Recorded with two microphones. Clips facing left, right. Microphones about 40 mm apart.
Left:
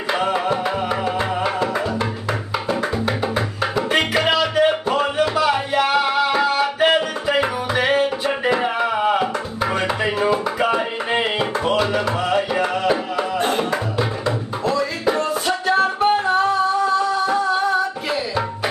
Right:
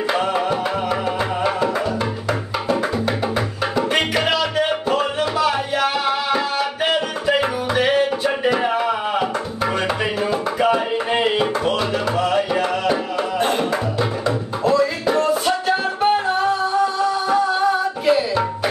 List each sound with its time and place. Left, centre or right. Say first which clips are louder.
0.1 s music: left 2 dB; centre
3.7 s music: even; centre